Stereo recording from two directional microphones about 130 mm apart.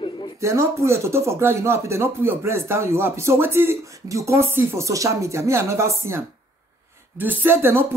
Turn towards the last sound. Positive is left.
turn(degrees=-20)  # may be behind; listen again after turning